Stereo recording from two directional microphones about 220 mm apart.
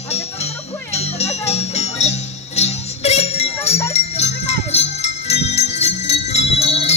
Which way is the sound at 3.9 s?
30° left (ahead or behind).